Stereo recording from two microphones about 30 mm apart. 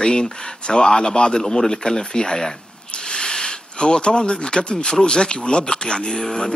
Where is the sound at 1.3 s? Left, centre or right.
Centre.